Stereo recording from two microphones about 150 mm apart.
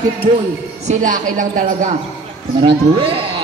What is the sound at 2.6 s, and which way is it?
Speech, 40° right (ahead or behind).